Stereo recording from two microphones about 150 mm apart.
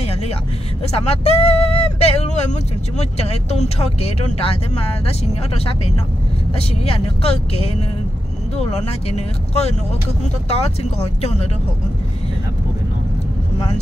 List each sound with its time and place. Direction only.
0.9 s speech: 45° left (ahead or behind)
6.8 s speech: 40° left (ahead or behind)